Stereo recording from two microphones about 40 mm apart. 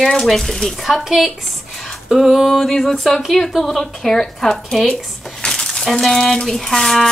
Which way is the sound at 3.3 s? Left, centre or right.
Centre.